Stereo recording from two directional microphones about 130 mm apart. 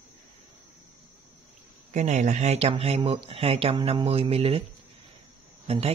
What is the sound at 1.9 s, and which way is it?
Speech, 65° right (ahead or behind).